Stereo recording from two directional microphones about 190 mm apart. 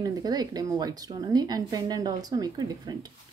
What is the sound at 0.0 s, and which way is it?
A woman's voice, 20° right (ahead or behind).